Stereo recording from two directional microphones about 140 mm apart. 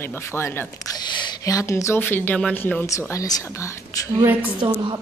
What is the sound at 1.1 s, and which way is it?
Speech, 30° left (ahead or behind).